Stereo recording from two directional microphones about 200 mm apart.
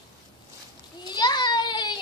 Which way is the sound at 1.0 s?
20° left (ahead or behind).